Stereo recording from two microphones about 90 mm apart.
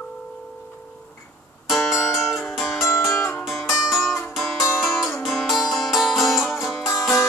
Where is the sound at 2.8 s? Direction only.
30° left (ahead or behind).